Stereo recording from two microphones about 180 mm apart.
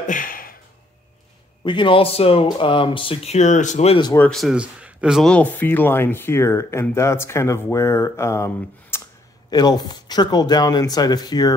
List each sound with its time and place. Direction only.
0.0 s a sound: 50° left (ahead or behind)
1.6 s speech: 25° left (ahead or behind)
4.0 s speech: 15° left (ahead or behind)
4.3 s speech: centre (ahead or behind); by 11.5 s 20° left (ahead or behind)